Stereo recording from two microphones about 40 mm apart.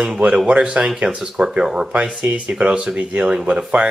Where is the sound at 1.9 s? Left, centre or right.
Right.